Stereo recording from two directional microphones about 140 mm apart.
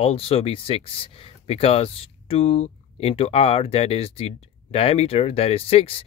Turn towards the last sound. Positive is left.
turn(degrees=45)  # may be behind; listen again after turning